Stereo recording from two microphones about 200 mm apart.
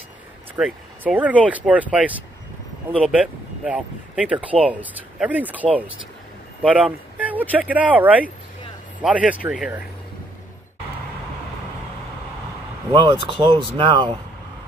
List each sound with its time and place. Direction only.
0.6 s speech: 5° right (ahead or behind)
12.9 s speech: 25° right (ahead or behind)